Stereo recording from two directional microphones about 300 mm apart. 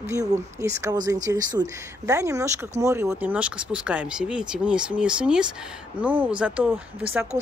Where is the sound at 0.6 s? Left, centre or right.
Centre.